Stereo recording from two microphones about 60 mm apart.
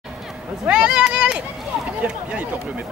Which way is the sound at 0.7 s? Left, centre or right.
Centre.